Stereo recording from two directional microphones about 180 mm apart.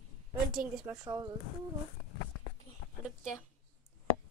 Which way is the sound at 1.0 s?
20° right (ahead or behind).